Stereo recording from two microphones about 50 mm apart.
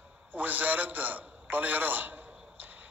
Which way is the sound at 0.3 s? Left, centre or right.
Right.